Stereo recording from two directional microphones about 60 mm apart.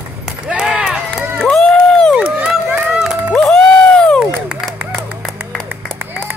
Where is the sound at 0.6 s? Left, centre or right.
Centre.